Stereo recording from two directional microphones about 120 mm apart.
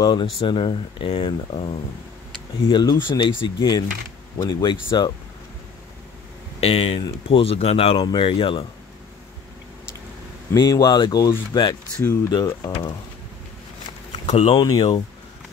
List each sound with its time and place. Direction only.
0.0 s speech: 40° left (ahead or behind)
2.7 s speech: 40° left (ahead or behind)
6.6 s speech: 55° left (ahead or behind)
10.5 s speech: 30° left (ahead or behind)
14.2 s speech: 70° left (ahead or behind)
14.5 s speech: 35° left (ahead or behind)